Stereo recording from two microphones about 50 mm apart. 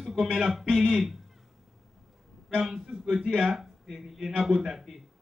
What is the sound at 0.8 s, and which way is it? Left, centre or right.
Speech, centre.